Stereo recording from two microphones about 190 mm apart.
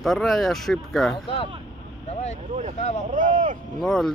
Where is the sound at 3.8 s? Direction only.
Centre (ahead or behind).